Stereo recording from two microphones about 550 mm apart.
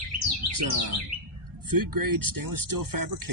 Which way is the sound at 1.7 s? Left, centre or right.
Right.